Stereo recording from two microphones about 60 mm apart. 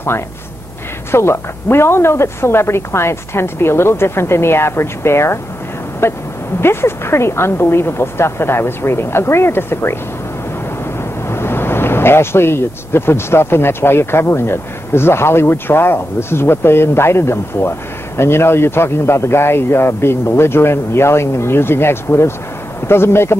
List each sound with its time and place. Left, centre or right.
1.1 s speech: left
11.2 s speech: left